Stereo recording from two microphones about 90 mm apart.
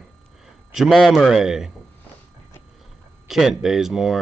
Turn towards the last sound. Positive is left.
turn(degrees=0)  # may be behind; listen again after turning